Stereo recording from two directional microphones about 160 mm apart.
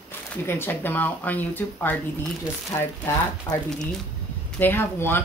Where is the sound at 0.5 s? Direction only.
15° left (ahead or behind).